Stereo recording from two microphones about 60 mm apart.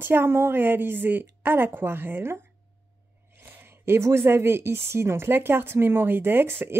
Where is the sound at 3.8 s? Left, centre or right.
Right.